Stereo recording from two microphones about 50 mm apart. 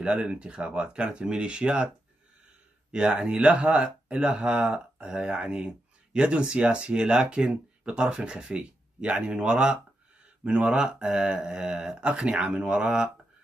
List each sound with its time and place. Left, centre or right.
0.0 s speech: right
2.9 s speech: centre